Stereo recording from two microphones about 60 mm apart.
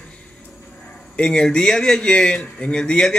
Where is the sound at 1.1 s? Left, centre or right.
Centre.